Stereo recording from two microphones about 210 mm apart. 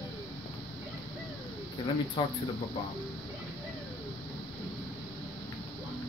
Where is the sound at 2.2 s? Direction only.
20° left (ahead or behind).